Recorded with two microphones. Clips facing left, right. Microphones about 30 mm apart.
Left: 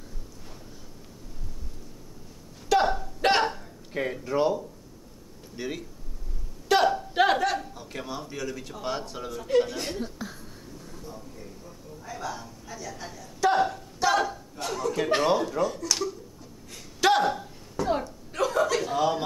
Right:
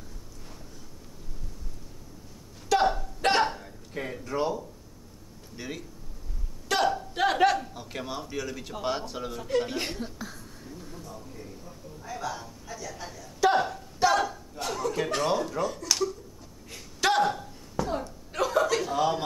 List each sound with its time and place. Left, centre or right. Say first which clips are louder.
2.7 s hiccup: left 1 dB; centre
3.9 s speech: left 5 dB; centre
6.7 s a sound: left 4 dB; centre
7.7 s speech: even; centre
9.7 s speech: right 1 dB; centre
9.9 s a sound: left 3 dB; centre
15.2 s speech: left 3 dB; centre
15.6 s speech: left 1 dB; centre
17.0 s a sound: left 2 dB; centre
18.0 s chuckle: left 1 dB; centre